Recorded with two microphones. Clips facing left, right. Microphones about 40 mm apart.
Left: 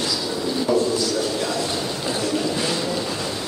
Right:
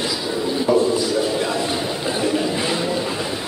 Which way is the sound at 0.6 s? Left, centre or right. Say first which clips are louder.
Right 3 dB; centre.